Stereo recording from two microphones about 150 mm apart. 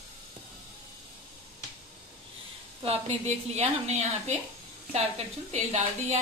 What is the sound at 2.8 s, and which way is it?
A woman's voice, 45° right (ahead or behind).